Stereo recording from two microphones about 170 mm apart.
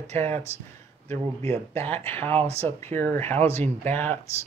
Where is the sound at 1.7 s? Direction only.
15° left (ahead or behind).